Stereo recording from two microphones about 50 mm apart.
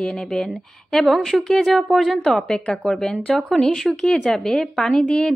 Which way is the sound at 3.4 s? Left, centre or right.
Centre.